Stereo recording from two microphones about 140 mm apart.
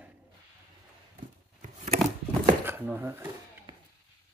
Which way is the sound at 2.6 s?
15° right (ahead or behind).